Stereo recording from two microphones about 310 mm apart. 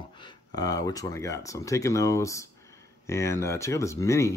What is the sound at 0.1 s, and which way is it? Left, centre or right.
Speech, centre.